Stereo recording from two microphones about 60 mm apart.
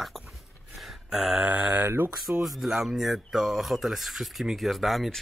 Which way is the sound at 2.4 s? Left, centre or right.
Centre.